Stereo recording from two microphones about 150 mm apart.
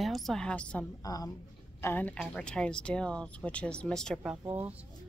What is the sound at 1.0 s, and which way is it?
A woman's voice, 25° left (ahead or behind).